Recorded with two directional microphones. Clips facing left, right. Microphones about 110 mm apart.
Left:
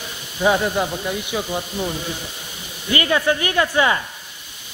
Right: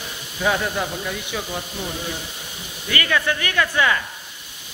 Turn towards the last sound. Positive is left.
turn(degrees=25)  # may be behind; listen again after turning